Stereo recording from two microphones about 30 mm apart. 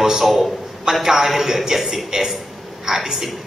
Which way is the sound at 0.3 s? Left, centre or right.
Centre.